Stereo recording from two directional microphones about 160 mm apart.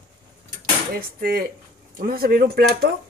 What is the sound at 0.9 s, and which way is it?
Speech, 70° right (ahead or behind).